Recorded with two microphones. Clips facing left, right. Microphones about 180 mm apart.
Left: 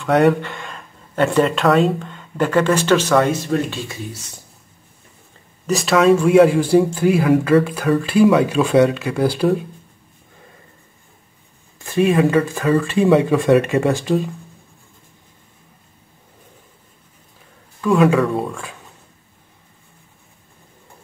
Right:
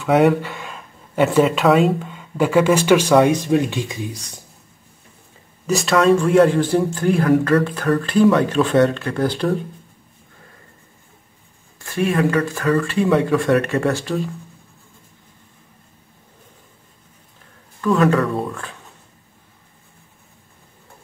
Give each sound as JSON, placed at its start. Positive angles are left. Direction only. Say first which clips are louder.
{"t": 0.0, "sound": "speech", "louder": "even", "side_deg": -5}
{"t": 5.7, "sound": "speech", "louder": "left 1 dB", "side_deg": 0}
{"t": 11.8, "sound": "speech", "louder": "left 3 dB", "side_deg": 20}
{"t": 17.7, "sound": "speech", "louder": "left 2 dB", "side_deg": 5}